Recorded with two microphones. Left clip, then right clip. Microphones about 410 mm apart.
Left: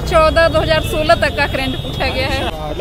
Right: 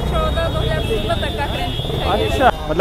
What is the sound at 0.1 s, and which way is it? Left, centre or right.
Speech, left.